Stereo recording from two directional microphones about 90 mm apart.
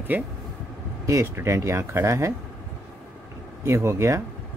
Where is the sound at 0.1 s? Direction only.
20° right (ahead or behind).